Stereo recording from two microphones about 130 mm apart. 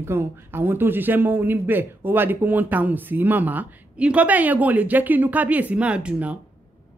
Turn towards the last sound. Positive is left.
turn(degrees=-10)  # may be behind; listen again after turning